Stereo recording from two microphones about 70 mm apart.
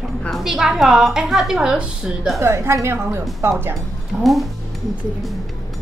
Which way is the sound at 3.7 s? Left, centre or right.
Centre.